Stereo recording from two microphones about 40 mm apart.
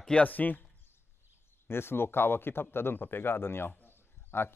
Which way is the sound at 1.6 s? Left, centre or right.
Left.